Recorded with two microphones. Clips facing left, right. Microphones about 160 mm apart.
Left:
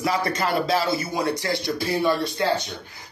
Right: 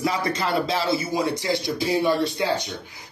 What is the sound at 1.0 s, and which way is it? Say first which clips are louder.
Speech: right 1 dB; 15° right (ahead or behind).